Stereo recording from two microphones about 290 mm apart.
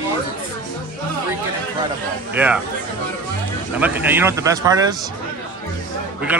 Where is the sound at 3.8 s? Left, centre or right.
Centre.